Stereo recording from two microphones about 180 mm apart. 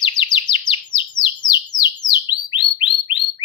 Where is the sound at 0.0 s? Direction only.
25° left (ahead or behind).